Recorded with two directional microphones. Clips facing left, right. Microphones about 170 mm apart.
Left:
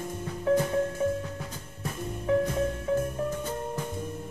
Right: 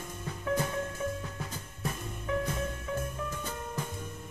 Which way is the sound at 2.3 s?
35° left (ahead or behind).